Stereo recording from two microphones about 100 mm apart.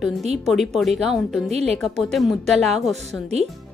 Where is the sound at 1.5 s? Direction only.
90° right.